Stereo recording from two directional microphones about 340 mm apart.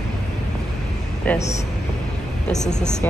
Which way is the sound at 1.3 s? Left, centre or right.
Centre.